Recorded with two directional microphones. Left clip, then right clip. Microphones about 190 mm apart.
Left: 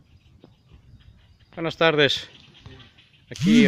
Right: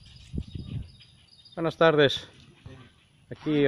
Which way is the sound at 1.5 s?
Centre (ahead or behind).